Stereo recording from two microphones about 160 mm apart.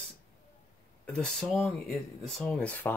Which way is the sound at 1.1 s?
5° left (ahead or behind).